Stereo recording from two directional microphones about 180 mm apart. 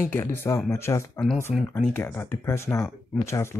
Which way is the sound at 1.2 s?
Centre (ahead or behind).